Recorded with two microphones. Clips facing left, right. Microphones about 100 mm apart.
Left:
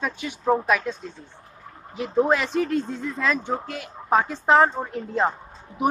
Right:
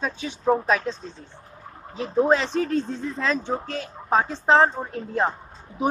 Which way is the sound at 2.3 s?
30° right (ahead or behind).